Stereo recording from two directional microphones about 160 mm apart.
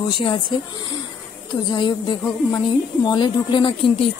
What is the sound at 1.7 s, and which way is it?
A woman's voice, 25° left (ahead or behind).